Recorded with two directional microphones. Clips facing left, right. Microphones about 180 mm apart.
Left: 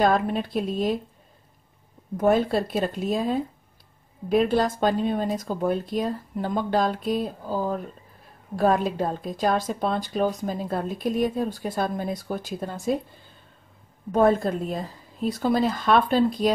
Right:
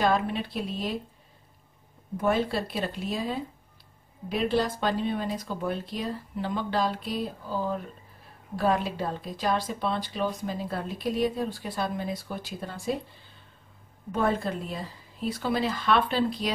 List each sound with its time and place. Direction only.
0.0 s speech: 45° left (ahead or behind)
2.1 s speech: 45° left (ahead or behind)
14.1 s speech: 45° left (ahead or behind)